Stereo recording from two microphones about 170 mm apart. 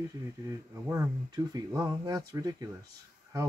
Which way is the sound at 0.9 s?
20° right (ahead or behind).